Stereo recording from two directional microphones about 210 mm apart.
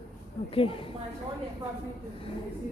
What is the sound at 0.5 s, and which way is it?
Speech, 25° left (ahead or behind).